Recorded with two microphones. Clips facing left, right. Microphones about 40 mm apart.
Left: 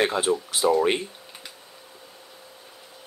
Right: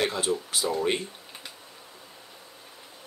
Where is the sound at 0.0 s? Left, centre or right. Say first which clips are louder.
Left 4 dB; left.